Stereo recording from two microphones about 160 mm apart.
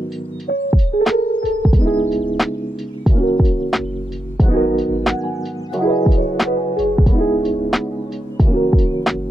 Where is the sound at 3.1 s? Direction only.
35° left (ahead or behind).